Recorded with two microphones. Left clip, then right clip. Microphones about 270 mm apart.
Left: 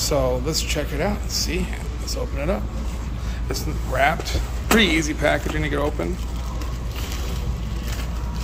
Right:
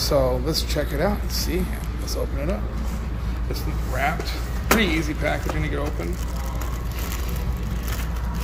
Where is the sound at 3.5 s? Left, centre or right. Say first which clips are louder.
Left 4 dB; centre.